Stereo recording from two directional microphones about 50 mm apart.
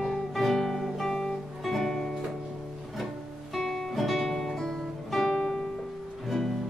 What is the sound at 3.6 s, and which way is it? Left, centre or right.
Music, centre.